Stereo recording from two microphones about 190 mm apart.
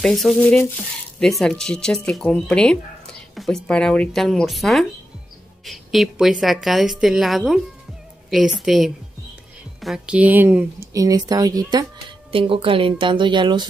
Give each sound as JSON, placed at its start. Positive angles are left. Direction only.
{"t": 0.0, "sound": "a woman's voice", "side_deg": 0}